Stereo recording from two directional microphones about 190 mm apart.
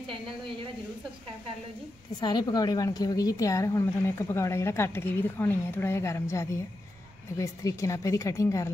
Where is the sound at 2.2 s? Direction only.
20° left (ahead or behind).